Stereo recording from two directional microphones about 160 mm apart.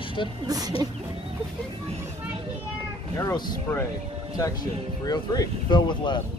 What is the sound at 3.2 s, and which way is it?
Speech, 25° left (ahead or behind).